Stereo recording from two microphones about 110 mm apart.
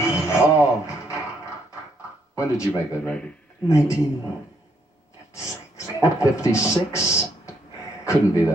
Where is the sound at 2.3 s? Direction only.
25° left (ahead or behind).